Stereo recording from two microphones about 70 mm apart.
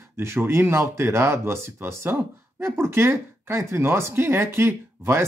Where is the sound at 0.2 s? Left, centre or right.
Right.